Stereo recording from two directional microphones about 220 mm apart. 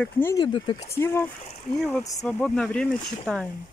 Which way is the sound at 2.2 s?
5° left (ahead or behind).